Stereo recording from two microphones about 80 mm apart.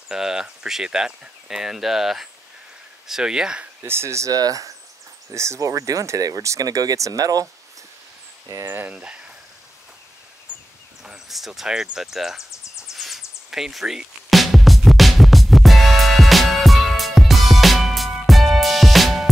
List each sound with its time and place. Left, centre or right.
0.1 s speech: centre
3.8 s speech: right
4.3 s speech: right
8.6 s speech: right
8.9 s speech: centre
10.5 s rustling leaves: centre
11.1 s speech: centre
12.8 s a sound: centre
13.5 s music: centre